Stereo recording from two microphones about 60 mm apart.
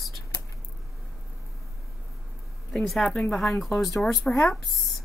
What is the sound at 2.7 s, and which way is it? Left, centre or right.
A woman's voice, centre.